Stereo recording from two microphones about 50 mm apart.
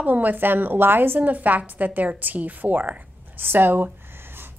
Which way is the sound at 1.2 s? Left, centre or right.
Right.